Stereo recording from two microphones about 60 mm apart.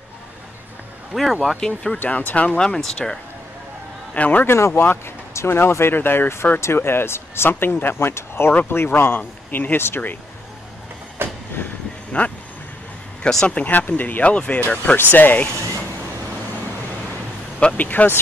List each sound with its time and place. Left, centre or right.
1.1 s speech: centre
1.6 s speech: centre
2.0 s speech: left; by 3.2 s centre
4.1 s a man's voice: left
4.5 s speech: left
11.2 s train: right
12.1 s speech: left
13.5 s speech: left
15.0 s speech: left
17.6 s speech: centre
17.8 s speech: left